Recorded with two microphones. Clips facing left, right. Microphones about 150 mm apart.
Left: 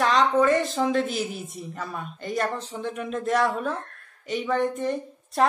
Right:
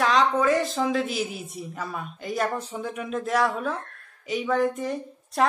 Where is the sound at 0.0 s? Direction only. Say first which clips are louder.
Left 1 dB; centre (ahead or behind).